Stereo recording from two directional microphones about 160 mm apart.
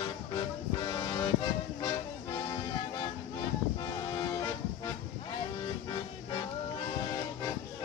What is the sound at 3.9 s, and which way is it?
Music, 25° left (ahead or behind).